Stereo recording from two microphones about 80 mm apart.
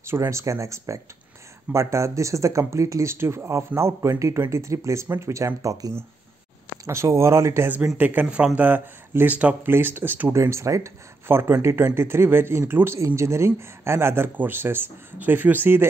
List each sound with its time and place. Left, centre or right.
0.0 s speech: right
5.6 s speech: right
7.7 s speech: right
9.7 s speech: right
10.3 s speech: right